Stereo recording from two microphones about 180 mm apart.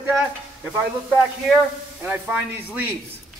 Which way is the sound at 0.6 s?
Centre (ahead or behind).